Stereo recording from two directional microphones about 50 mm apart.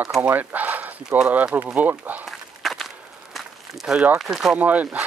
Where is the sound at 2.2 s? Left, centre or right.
Centre.